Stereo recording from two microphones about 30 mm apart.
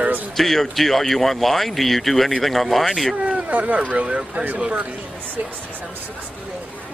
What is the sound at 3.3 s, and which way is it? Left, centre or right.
Speech, right.